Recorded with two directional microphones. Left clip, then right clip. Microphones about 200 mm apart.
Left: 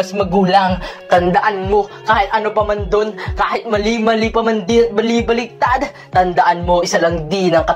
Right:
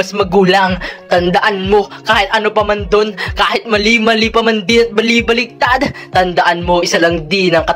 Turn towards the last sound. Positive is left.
turn(degrees=-25)  # may be behind; listen again after turning